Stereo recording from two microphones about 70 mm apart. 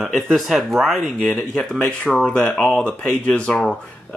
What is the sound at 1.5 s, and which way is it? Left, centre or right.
Speech, centre.